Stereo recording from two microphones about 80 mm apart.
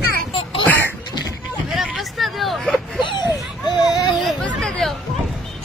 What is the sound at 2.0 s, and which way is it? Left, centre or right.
Hubbub, centre.